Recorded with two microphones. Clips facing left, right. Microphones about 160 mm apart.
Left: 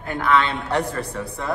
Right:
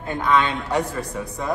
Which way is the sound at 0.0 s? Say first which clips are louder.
Even; 20° right (ahead or behind).